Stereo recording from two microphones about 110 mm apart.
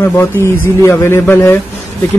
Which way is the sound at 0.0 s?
20° left (ahead or behind).